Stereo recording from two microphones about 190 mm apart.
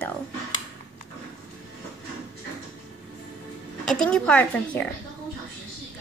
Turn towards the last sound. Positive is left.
turn(degrees=10)  # may be behind; listen again after turning